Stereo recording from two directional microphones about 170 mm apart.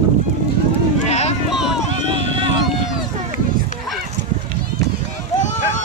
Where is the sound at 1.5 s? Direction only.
5° right (ahead or behind).